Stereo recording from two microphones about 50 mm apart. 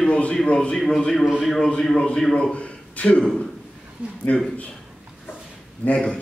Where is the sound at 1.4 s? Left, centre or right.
Centre; by 3.2 s left.